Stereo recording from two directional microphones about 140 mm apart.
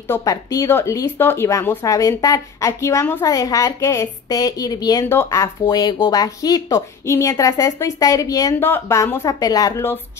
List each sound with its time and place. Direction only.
0.1 s a woman's voice: 25° left (ahead or behind)